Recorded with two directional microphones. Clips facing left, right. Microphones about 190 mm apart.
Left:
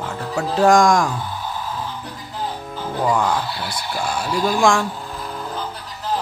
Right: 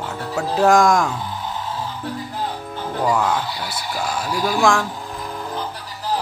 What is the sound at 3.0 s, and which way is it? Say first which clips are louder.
Speech: even; 5° right (ahead or behind).